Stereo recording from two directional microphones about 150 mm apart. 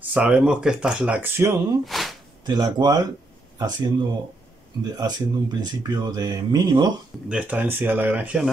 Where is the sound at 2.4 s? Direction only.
30° right (ahead or behind).